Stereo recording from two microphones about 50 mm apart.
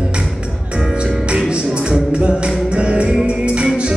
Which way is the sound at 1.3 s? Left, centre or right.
Centre.